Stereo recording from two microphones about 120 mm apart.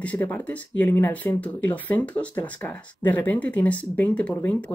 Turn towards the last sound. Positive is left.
turn(degrees=15)  # may be behind; listen again after turning